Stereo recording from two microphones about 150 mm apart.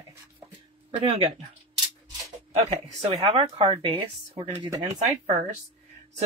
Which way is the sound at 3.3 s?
35° right (ahead or behind).